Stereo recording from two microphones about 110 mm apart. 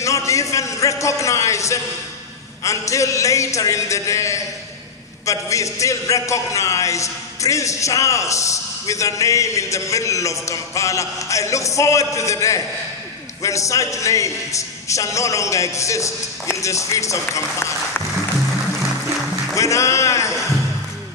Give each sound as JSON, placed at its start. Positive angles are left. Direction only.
{"t": 0.0, "sound": "a man's voice", "side_deg": 30}
{"t": 19.5, "sound": "a man's voice", "side_deg": 30}